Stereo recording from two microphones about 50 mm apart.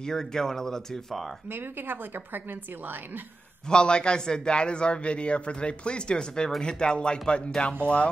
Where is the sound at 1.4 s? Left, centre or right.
Right.